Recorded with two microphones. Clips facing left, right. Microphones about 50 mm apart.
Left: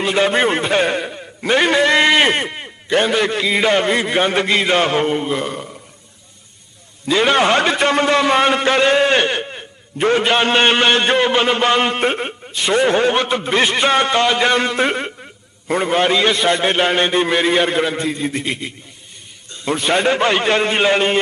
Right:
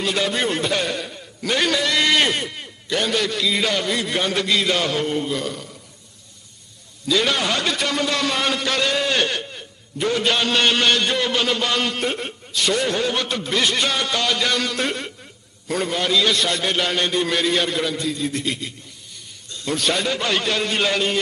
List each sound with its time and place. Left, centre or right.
0.0 s a man's voice: left
7.1 s a man's voice: left